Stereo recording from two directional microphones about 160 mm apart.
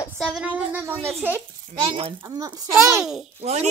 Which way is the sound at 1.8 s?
30° right (ahead or behind).